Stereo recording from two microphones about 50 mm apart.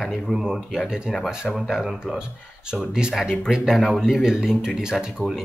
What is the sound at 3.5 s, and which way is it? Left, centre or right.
Speech, centre.